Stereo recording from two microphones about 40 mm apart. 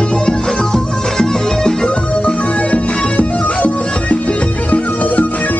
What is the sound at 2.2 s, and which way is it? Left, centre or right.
Music, left.